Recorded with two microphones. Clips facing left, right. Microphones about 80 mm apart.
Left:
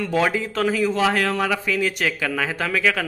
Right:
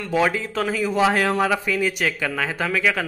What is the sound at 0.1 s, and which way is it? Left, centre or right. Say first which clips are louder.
Speech: right 2 dB; centre.